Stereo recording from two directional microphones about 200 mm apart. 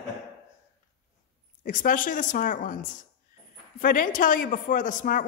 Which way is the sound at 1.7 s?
45° left (ahead or behind).